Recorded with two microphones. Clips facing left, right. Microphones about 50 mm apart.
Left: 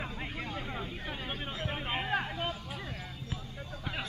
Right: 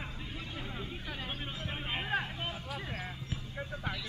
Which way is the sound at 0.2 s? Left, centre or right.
Left.